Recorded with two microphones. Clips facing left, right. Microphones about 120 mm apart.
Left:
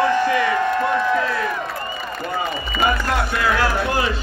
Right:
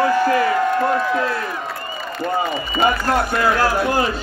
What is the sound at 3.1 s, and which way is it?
Speech, 45° right (ahead or behind).